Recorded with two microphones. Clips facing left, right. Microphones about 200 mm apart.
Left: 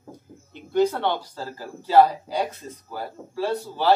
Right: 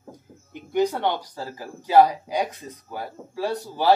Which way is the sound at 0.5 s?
15° right (ahead or behind).